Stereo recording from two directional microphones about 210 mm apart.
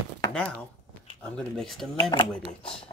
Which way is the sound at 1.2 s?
Centre (ahead or behind).